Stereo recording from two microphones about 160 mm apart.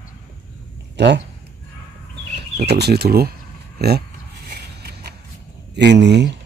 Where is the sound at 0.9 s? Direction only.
90° right.